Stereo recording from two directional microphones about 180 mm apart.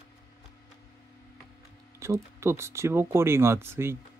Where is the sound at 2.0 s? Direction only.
15° right (ahead or behind).